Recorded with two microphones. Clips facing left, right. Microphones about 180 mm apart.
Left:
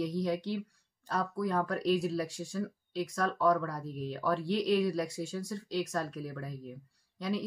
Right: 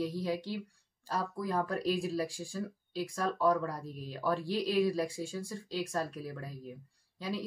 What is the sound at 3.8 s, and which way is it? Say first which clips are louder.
Speech: left 5 dB; 10° right (ahead or behind).